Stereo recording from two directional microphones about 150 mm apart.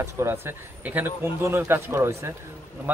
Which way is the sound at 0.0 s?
15° right (ahead or behind).